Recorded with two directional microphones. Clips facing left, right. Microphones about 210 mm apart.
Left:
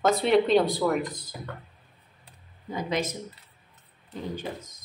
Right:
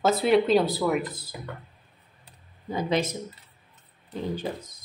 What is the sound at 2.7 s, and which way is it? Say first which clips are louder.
Speech: right 3 dB; 30° right (ahead or behind).